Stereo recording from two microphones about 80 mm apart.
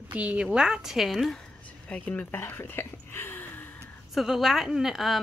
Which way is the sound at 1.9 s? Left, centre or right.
Centre.